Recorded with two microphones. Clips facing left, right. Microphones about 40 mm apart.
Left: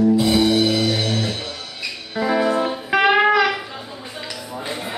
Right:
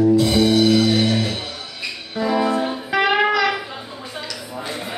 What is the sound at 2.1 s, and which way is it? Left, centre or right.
Music, centre.